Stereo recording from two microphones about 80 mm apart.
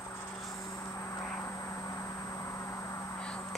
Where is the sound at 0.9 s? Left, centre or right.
Left.